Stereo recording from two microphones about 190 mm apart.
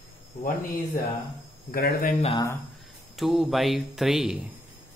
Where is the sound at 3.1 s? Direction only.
Centre (ahead or behind).